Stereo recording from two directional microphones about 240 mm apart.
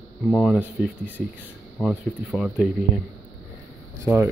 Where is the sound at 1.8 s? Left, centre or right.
Centre.